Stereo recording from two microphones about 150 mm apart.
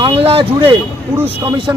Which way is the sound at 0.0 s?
40° right (ahead or behind).